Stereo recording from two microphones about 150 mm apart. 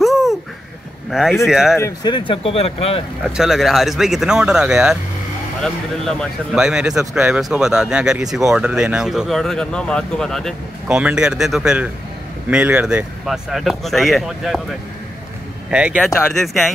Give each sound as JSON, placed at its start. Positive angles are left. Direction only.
{"t": 0.0, "sound": "a sound", "side_deg": 0}
{"t": 1.1, "sound": "speech", "side_deg": 0}
{"t": 1.8, "sound": "speech", "side_deg": 25}
{"t": 3.3, "sound": "speech", "side_deg": 0}
{"t": 15.7, "sound": "speech", "side_deg": -5}